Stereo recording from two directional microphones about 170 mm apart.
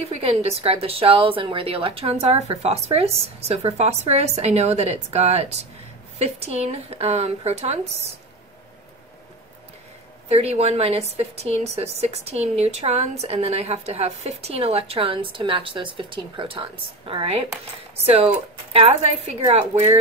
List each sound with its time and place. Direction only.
0.0 s a woman's voice: 35° right (ahead or behind)
10.2 s a woman's voice: 40° right (ahead or behind)